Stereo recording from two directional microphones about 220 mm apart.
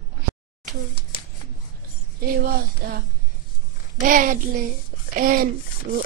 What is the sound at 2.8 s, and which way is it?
Speech, 45° right (ahead or behind).